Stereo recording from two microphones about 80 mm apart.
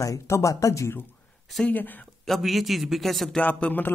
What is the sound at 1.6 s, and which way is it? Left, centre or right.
Speech, left.